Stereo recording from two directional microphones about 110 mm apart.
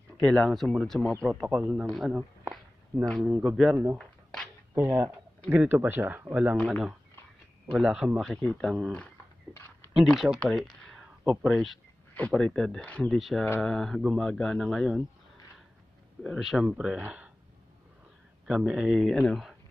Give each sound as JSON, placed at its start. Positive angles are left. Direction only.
{"t": 0.2, "sound": "speech", "side_deg": 5}
{"t": 1.9, "sound": "speech", "side_deg": 0}
{"t": 2.9, "sound": "speech", "side_deg": -15}
{"t": 4.0, "sound": "a sound", "side_deg": 5}
{"t": 4.7, "sound": "speech", "side_deg": -25}
{"t": 6.5, "sound": "speech", "side_deg": 10}
{"t": 7.7, "sound": "speech", "side_deg": -5}
{"t": 8.4, "sound": "speech", "side_deg": 10}
{"t": 9.9, "sound": "speech", "side_deg": 0}
{"t": 10.5, "sound": "a sound", "side_deg": 0}
{"t": 11.4, "sound": "speech", "side_deg": 0}
{"t": 16.2, "sound": "speech", "side_deg": 0}
{"t": 18.5, "sound": "speech", "side_deg": -5}